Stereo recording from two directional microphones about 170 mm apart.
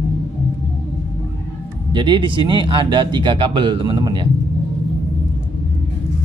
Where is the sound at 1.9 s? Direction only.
25° right (ahead or behind).